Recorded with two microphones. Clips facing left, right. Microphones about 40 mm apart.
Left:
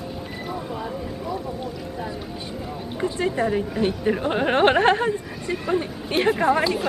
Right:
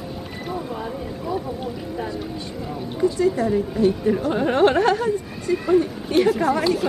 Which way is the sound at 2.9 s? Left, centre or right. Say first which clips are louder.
Right 4 dB; left.